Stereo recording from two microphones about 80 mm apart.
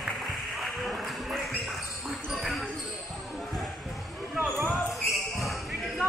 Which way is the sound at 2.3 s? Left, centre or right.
Centre.